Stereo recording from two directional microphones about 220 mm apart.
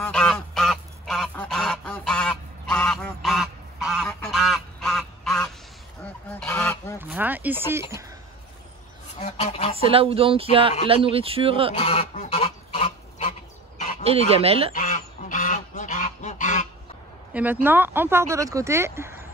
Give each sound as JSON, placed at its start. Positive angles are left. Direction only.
{"t": 0.0, "sound": "goose", "side_deg": 5}
{"t": 7.0, "sound": "a sound", "side_deg": -10}
{"t": 9.2, "sound": "goose", "side_deg": 25}
{"t": 9.8, "sound": "speech", "side_deg": -25}
{"t": 11.7, "sound": "goose", "side_deg": 30}
{"t": 14.3, "sound": "speech", "side_deg": -25}
{"t": 14.7, "sound": "goose", "side_deg": 35}
{"t": 17.3, "sound": "speech", "side_deg": -10}